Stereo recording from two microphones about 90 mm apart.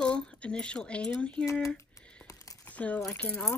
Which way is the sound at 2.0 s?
10° left (ahead or behind).